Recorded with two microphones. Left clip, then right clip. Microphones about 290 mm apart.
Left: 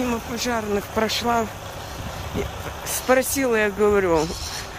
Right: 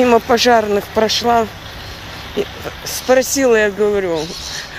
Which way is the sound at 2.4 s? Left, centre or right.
Left.